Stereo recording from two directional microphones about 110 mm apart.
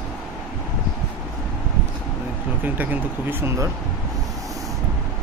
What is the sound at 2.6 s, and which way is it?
Speech, 15° right (ahead or behind).